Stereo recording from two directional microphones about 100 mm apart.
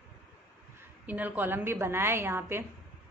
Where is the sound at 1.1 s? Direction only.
15° right (ahead or behind).